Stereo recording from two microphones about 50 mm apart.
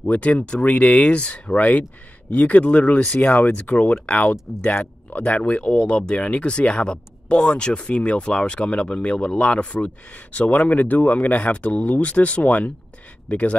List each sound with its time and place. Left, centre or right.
0.0 s speech: left